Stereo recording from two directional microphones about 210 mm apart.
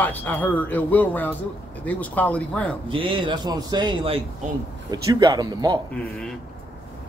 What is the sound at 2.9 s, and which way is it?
A man's voice, 25° right (ahead or behind).